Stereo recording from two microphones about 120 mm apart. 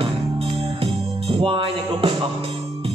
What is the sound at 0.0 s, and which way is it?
Music, 50° right (ahead or behind).